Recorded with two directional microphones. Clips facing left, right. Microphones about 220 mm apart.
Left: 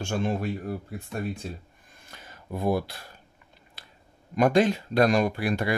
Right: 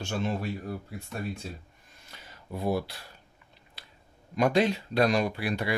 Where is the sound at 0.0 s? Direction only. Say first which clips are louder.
Left 3 dB; 50° left (ahead or behind).